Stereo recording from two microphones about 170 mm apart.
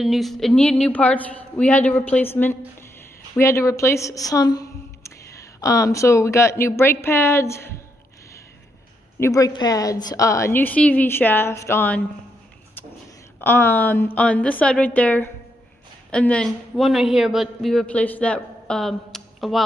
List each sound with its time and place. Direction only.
0.0 s a man's voice: centre (ahead or behind); by 7.7 s 15° left (ahead or behind)
9.2 s a man's voice: 20° left (ahead or behind)
13.4 s a man's voice: 15° left (ahead or behind)